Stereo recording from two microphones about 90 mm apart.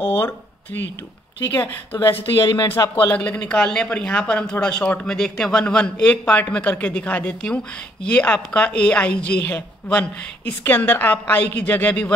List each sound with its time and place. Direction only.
0.0 s speech: 20° left (ahead or behind)
1.5 s a woman's voice: 20° left (ahead or behind)
2.4 s speech: 50° left (ahead or behind)
3.1 s a woman's voice: 15° left (ahead or behind)